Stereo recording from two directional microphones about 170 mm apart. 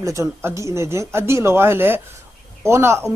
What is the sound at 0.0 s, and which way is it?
A man's voice, 15° right (ahead or behind).